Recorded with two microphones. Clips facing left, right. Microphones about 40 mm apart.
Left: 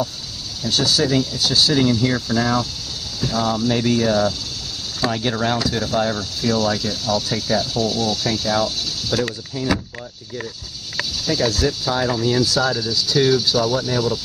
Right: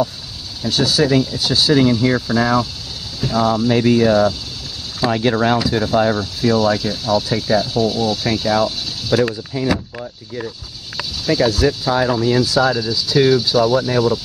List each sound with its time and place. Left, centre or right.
0.7 s speech: centre; by 9.7 s right
11.2 s speech: centre